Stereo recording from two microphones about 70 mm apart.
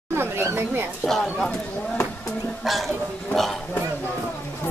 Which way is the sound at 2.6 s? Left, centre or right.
Centre.